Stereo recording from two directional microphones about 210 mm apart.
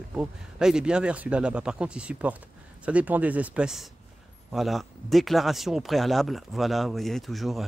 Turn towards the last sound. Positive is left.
turn(degrees=0)  # may be behind; listen again after turning